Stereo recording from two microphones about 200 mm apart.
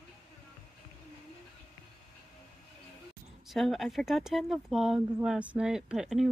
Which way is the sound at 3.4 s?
Centre (ahead or behind).